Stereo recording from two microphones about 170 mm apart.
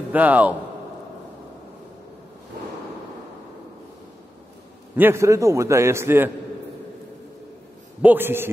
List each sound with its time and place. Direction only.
0.1 s a man's voice: 10° right (ahead or behind)
4.9 s a man's voice: 15° right (ahead or behind)
8.0 s a man's voice: 10° right (ahead or behind)